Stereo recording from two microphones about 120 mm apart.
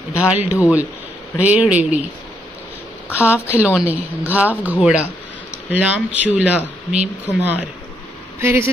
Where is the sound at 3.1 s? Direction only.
10° right (ahead or behind).